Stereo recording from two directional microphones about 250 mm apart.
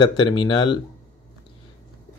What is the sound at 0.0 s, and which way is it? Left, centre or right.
Speech, centre.